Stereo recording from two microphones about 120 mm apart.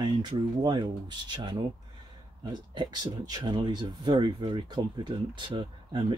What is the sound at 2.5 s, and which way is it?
Speech, 35° right (ahead or behind).